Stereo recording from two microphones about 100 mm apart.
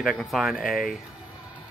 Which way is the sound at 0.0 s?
Centre (ahead or behind).